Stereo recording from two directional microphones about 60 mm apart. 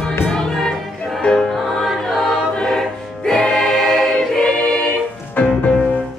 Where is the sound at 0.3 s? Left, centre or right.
Centre.